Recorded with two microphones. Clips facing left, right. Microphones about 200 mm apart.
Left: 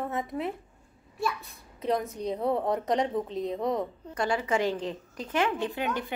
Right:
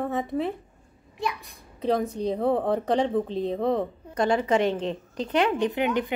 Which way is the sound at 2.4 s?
80° right.